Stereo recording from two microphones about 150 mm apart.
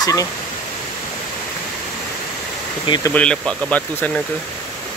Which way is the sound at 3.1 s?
5° left (ahead or behind).